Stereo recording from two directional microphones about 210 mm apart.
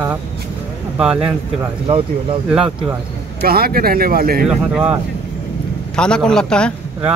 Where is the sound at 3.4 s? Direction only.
45° right (ahead or behind).